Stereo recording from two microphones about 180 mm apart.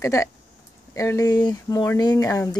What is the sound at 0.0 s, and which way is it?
Speech, 15° left (ahead or behind).